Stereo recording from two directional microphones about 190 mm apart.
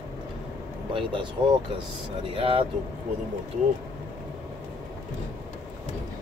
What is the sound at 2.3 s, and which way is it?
Speech, 30° right (ahead or behind).